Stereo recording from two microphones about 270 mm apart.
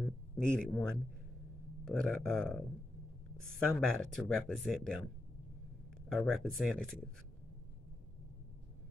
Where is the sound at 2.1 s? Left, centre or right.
Centre.